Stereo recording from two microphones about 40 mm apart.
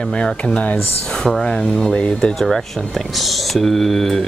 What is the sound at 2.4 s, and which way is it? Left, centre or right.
Speech, centre.